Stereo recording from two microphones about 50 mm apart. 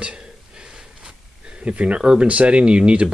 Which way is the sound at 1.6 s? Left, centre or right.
Right.